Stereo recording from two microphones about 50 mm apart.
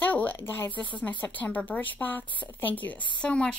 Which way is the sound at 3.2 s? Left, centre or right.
Left.